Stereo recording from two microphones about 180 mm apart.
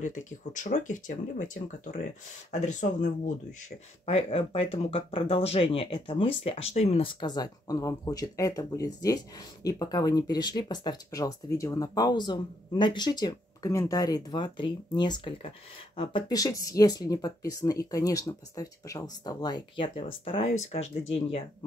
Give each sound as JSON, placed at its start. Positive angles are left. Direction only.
{"t": 0.0, "sound": "speech", "side_deg": 45}